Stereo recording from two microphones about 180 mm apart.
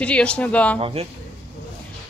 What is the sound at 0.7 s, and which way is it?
Speech, 30° right (ahead or behind).